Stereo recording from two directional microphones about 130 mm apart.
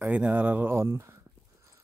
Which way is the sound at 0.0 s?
10° right (ahead or behind).